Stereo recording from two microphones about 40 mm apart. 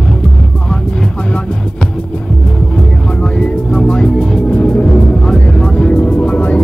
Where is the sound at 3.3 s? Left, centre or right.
Left.